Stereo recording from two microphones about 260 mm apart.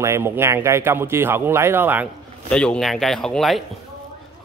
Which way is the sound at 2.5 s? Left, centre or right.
Centre.